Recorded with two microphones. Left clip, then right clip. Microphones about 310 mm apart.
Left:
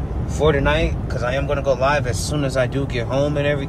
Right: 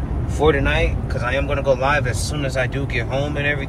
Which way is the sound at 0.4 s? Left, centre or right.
Centre.